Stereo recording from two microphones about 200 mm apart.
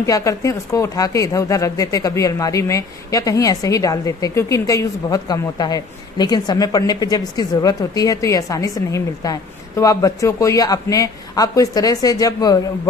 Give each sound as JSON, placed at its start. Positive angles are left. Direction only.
{"t": 0.0, "sound": "speech", "side_deg": 15}